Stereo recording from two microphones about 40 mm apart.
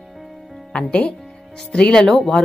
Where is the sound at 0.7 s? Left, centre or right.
Left.